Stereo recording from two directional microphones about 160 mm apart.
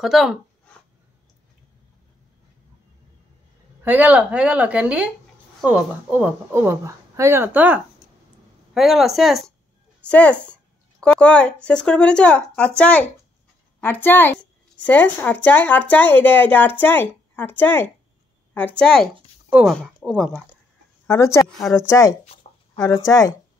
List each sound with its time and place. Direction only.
0.0 s a sound: centre (ahead or behind)
3.8 s a woman's voice: 10° right (ahead or behind)
21.1 s a woman's voice: 20° left (ahead or behind)
21.5 s speech: centre (ahead or behind)
21.7 s a woman's voice: 20° left (ahead or behind)